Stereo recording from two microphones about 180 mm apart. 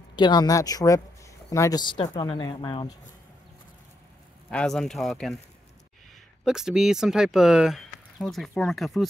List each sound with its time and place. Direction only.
0.1 s speech: 25° left (ahead or behind)
4.5 s speech: 5° left (ahead or behind)
6.4 s speech: 5° right (ahead or behind)